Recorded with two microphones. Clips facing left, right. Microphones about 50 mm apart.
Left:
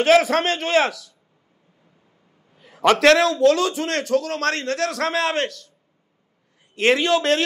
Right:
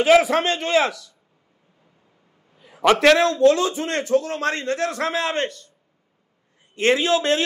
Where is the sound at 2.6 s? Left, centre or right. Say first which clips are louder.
Even; centre.